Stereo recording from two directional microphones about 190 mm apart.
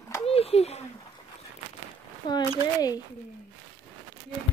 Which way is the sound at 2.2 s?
25° left (ahead or behind).